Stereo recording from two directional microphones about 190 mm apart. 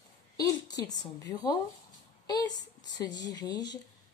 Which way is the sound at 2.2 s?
20° left (ahead or behind).